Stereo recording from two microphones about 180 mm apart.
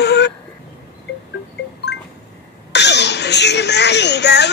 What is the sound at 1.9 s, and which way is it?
Music, 70° left (ahead or behind).